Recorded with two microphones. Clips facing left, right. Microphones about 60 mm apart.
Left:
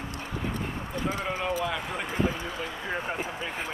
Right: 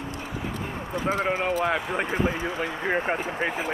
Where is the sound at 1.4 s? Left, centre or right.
Right.